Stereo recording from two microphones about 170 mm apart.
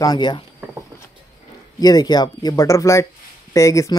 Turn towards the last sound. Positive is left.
turn(degrees=20)  # may be behind; listen again after turning